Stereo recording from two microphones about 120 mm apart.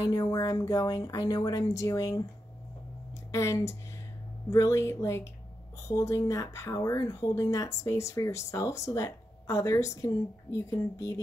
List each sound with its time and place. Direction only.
0.0 s speech: 30° left (ahead or behind)
3.3 s speech: 25° left (ahead or behind)